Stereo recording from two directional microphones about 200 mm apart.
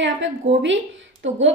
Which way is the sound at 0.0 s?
65° right (ahead or behind).